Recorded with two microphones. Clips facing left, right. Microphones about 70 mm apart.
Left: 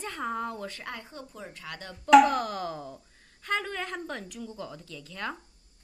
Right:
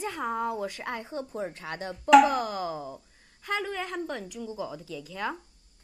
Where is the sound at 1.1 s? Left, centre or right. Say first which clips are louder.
Right 9 dB; right.